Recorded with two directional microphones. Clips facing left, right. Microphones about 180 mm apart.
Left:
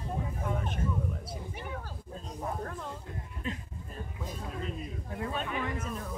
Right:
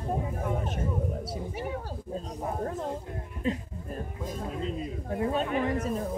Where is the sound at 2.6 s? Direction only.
30° right (ahead or behind).